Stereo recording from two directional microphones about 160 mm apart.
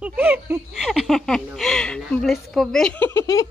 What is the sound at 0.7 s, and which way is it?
Speech, centre (ahead or behind).